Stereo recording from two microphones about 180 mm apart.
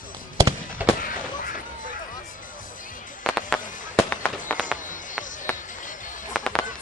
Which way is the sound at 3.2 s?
Centre (ahead or behind).